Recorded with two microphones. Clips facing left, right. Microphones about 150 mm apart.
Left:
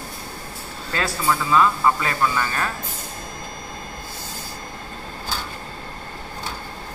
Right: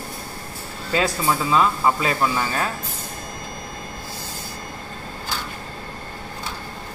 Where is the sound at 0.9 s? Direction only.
20° right (ahead or behind).